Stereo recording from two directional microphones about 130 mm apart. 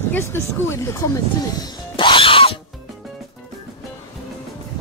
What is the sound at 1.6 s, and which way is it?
Music, 40° left (ahead or behind).